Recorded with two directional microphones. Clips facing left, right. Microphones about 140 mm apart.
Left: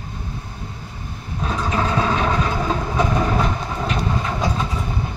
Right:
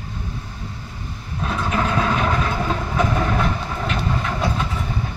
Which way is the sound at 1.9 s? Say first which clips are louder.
Left 1 dB; 10° left (ahead or behind).